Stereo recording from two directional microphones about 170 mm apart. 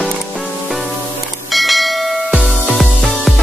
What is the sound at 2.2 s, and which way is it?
Music, 10° right (ahead or behind).